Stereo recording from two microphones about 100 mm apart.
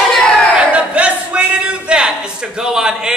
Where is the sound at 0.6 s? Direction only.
15° right (ahead or behind).